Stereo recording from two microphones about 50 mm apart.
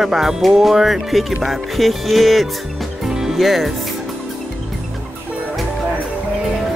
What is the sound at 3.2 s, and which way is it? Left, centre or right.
Music, centre.